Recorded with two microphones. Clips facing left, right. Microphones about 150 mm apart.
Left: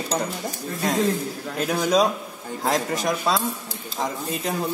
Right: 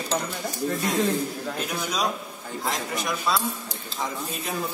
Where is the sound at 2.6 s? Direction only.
40° left (ahead or behind).